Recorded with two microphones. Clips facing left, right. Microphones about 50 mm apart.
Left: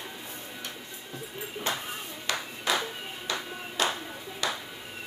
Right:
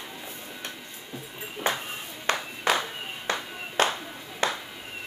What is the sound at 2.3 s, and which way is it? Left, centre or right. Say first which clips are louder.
Clapping: right 5 dB; right.